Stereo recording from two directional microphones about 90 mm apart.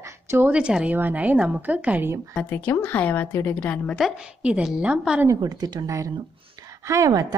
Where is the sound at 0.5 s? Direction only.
10° right (ahead or behind).